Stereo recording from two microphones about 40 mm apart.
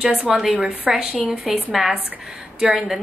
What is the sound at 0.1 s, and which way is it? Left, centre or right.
Speech, right.